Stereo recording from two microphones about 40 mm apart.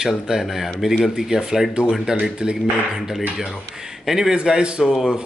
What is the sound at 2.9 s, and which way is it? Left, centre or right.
Speech, centre.